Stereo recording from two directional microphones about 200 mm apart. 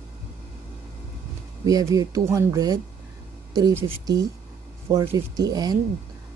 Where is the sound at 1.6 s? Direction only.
20° right (ahead or behind).